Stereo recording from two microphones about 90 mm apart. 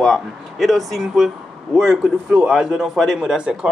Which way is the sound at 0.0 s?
Centre (ahead or behind).